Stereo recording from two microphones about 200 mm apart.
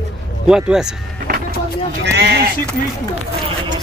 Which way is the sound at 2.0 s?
55° right (ahead or behind).